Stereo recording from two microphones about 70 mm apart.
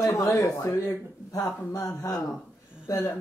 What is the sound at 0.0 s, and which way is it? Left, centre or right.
Speech, left.